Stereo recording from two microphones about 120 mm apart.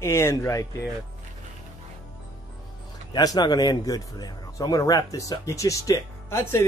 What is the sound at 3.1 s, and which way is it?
Speech, 35° left (ahead or behind).